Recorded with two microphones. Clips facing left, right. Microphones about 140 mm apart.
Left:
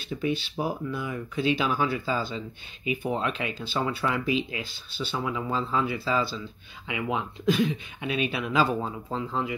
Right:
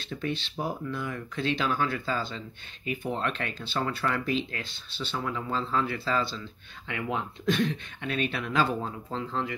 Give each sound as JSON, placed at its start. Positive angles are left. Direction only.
{"t": 0.1, "sound": "speech", "side_deg": 5}